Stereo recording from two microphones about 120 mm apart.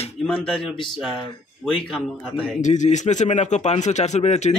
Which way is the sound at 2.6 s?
90° left.